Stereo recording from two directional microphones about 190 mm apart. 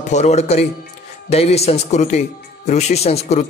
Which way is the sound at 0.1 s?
35° left (ahead or behind).